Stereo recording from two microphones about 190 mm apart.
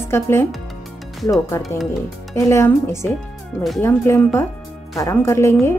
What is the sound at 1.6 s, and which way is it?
Speech, centre (ahead or behind).